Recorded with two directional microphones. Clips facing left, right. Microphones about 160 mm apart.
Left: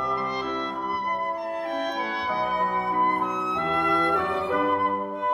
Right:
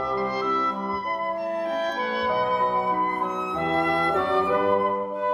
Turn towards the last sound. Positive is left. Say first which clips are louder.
# right 3 dB
turn(degrees=-30)  # may be behind; listen again after turning